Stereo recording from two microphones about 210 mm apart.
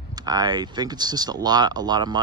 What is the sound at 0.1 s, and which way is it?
Speech, 20° right (ahead or behind).